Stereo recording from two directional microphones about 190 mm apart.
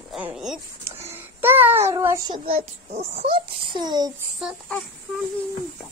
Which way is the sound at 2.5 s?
35° right (ahead or behind).